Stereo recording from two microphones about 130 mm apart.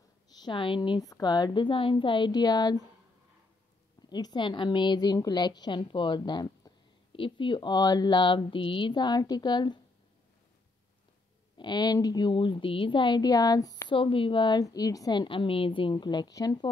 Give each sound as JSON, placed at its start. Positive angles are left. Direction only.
{"t": 0.4, "sound": "a woman's voice", "side_deg": 40}
{"t": 4.1, "sound": "a woman's voice", "side_deg": 35}
{"t": 11.5, "sound": "a woman's voice", "side_deg": 35}
{"t": 13.9, "sound": "a woman's voice", "side_deg": 40}